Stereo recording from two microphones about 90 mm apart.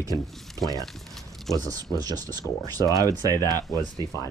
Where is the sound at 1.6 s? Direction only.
45° right (ahead or behind).